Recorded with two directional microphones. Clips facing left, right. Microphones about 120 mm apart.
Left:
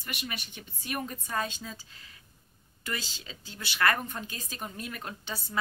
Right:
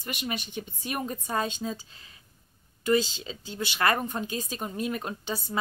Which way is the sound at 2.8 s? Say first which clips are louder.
Right 13 dB; 20° right (ahead or behind).